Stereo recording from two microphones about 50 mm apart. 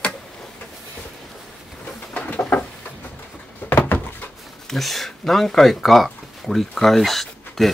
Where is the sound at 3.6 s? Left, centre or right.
Left.